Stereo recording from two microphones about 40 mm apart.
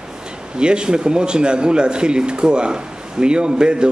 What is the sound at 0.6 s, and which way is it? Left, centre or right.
A man's voice, right.